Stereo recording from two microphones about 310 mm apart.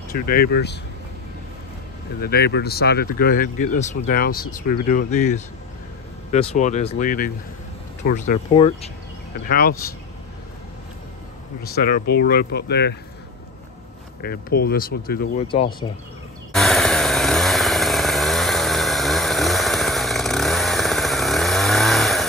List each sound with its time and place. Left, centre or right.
0.1 s speech: left
2.1 s speech: left
11.6 s speech: left
14.2 s speech: left
15.4 s speech: centre
16.5 s chainsaw: centre